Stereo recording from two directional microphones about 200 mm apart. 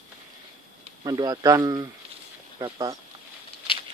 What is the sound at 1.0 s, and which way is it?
Speech, 20° right (ahead or behind).